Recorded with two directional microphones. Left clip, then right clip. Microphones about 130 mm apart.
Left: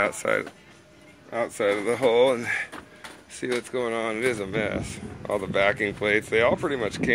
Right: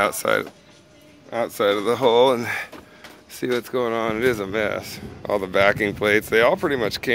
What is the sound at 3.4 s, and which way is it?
Speech, 80° right.